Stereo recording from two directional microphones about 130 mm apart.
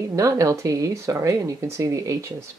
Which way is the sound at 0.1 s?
25° right (ahead or behind).